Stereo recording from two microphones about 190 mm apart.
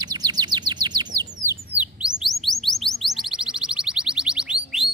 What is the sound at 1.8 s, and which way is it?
Chirp, 5° right (ahead or behind).